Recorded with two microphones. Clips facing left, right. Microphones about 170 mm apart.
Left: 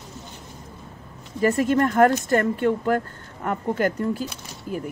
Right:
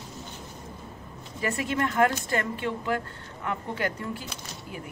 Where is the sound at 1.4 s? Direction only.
45° left (ahead or behind).